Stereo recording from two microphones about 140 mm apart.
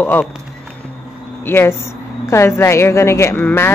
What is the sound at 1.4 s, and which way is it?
Speech, 15° left (ahead or behind).